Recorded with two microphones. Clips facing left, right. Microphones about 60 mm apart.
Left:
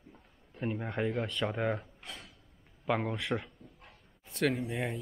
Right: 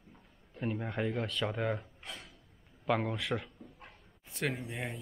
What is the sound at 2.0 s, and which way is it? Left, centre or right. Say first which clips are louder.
Drawer open or close: even; centre.